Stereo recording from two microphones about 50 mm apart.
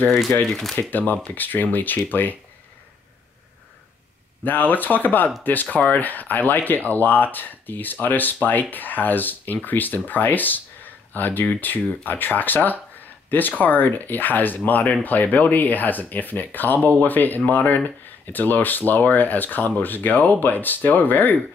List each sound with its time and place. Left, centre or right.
0.5 s speech: centre
0.7 s speech: left
4.5 s speech: left